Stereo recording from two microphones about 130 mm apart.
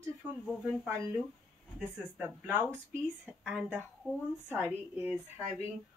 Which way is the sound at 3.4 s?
Centre (ahead or behind).